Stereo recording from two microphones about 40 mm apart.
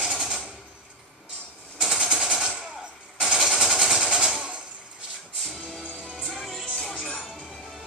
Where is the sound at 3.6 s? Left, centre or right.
Centre.